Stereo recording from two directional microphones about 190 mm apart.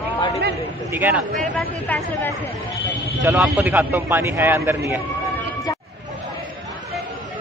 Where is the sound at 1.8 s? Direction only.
10° left (ahead or behind).